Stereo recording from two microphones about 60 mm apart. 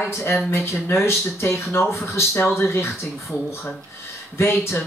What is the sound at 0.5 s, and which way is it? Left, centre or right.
Speech, left.